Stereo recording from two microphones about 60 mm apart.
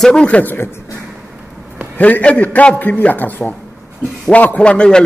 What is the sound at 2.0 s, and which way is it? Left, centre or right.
A man's voice, left.